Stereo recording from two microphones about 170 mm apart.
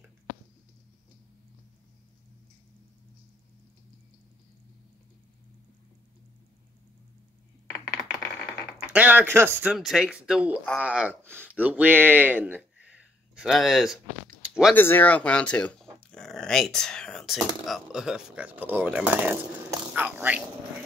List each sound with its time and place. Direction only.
7.7 s typing: 20° left (ahead or behind)
8.8 s speech: 10° right (ahead or behind)
14.7 s speech: 10° left (ahead or behind); by 20.4 s 10° right (ahead or behind)